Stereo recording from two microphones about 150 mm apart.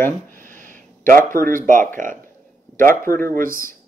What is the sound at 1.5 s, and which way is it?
Speech, 60° right (ahead or behind).